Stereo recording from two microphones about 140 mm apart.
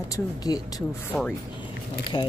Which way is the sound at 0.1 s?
25° left (ahead or behind).